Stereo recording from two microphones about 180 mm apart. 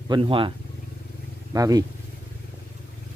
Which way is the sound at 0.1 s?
30° right (ahead or behind).